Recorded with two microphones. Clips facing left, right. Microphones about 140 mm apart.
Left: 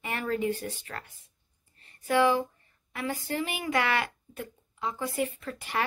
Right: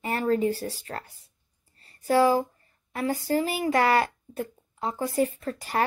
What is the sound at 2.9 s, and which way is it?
A child's voice, 35° right (ahead or behind).